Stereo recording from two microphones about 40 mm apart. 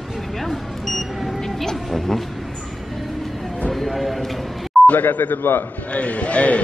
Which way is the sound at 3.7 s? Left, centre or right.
Centre.